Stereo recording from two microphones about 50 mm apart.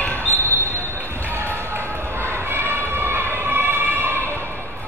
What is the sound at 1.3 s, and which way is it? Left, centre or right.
Music, right.